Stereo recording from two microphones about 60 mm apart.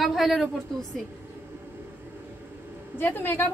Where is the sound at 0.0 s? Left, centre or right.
Centre.